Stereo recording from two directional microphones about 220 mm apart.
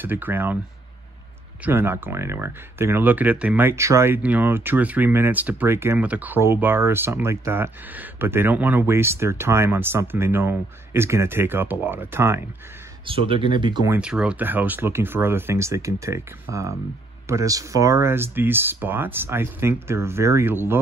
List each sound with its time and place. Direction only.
0.0 s speech: 10° right (ahead or behind)
1.6 s speech: 10° right (ahead or behind)
13.0 s speech: 25° right (ahead or behind)
13.9 s speech: 5° right (ahead or behind)